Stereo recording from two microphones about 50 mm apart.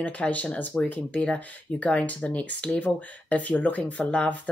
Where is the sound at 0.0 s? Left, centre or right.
Left.